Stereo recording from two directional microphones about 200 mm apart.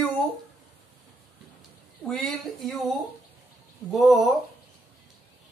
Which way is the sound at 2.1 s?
Centre (ahead or behind).